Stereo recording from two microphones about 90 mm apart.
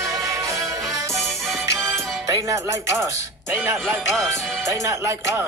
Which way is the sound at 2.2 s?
40° right (ahead or behind).